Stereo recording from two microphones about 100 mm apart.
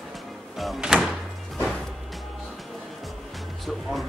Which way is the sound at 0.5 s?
5° right (ahead or behind).